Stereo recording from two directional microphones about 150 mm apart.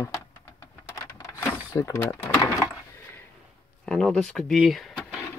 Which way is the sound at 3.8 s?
5° left (ahead or behind).